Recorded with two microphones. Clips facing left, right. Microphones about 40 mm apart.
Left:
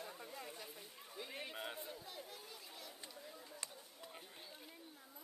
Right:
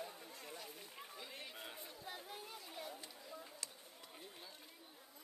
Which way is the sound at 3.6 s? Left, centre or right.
Left.